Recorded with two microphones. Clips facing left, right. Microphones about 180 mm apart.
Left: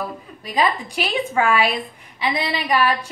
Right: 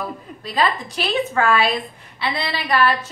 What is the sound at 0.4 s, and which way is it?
A woman's voice, 15° left (ahead or behind).